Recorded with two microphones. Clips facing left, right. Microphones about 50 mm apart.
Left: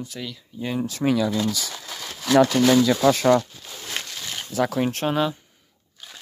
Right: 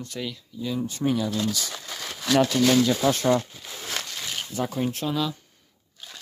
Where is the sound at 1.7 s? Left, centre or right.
Centre.